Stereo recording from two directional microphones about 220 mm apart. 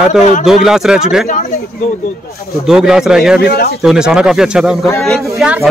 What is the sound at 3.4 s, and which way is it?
Speech, 45° left (ahead or behind).